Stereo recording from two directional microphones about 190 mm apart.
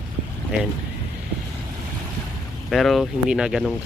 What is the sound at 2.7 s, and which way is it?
Speech, centre (ahead or behind).